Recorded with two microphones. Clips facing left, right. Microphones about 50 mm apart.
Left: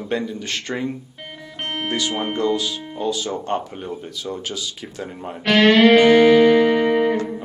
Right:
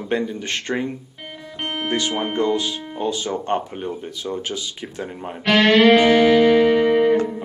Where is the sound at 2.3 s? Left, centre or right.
Centre.